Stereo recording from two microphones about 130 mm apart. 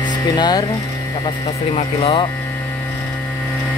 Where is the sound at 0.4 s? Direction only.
30° left (ahead or behind).